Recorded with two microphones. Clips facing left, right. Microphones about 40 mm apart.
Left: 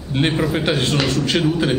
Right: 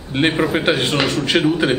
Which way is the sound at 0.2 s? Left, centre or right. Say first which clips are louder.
Right 2 dB; centre.